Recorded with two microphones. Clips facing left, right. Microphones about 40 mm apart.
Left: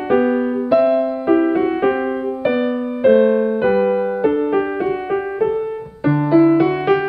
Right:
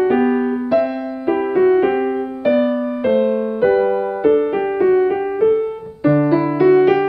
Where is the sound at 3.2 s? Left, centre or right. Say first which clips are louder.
Left 3 dB; centre.